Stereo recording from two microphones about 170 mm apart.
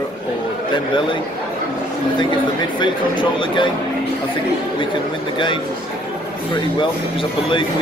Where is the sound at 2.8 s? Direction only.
30° left (ahead or behind).